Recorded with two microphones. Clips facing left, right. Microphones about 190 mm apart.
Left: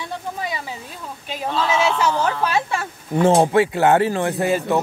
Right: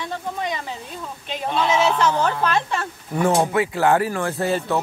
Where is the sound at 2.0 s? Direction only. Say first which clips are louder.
Even; 10° left (ahead or behind).